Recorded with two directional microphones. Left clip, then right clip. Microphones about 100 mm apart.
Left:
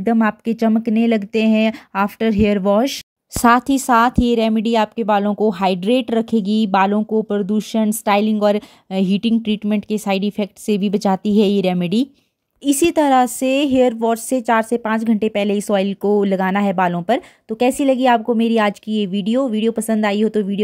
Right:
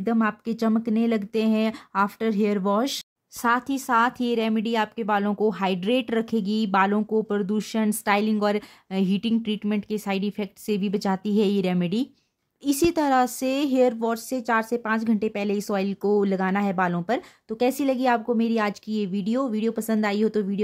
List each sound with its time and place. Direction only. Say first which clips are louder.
0.0 s speech: left 7 dB; 35° left (ahead or behind)
0.6 s speech: left 6 dB; 25° left (ahead or behind)
3.4 s speech: left 9 dB; 65° left (ahead or behind)
4.1 s a woman's voice: left 8 dB; 35° left (ahead or behind)